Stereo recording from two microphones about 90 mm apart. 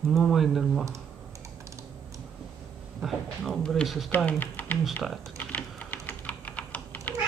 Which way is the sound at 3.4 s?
5° left (ahead or behind).